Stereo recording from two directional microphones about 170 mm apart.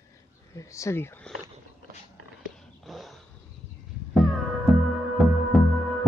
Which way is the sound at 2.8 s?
Centre (ahead or behind).